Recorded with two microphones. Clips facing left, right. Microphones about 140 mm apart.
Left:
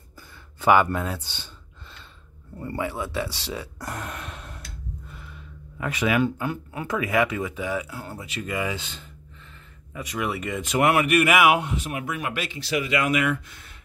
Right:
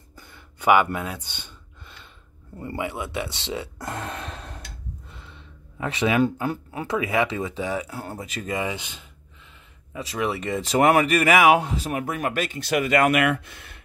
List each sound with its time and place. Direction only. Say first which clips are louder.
0.6 s speech: even; 15° right (ahead or behind); by 4.6 s 35° right (ahead or behind)
5.0 s gasp: left 2 dB; 25° right (ahead or behind)
6.4 s speech: right 2 dB; 30° right (ahead or behind)
8.5 s speech: even; 20° right (ahead or behind)
9.9 s speech: right 2 dB; 30° right (ahead or behind); by 13.4 s 65° right (ahead or behind)